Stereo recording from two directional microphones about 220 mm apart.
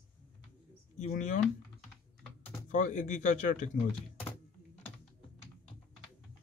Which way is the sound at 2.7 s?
35° left (ahead or behind).